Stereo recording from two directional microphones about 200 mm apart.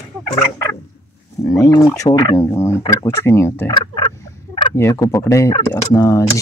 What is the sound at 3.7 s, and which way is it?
Frog, 25° left (ahead or behind).